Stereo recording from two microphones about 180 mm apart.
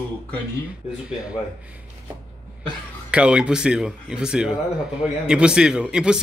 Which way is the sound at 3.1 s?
5° right (ahead or behind).